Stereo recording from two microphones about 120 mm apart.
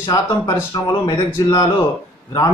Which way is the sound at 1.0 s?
30° left (ahead or behind).